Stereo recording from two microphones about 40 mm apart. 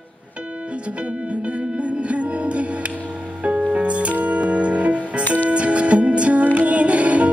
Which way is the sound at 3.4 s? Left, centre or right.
Right.